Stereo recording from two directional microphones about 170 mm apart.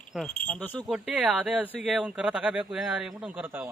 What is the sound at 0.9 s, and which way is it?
Speech, 10° right (ahead or behind).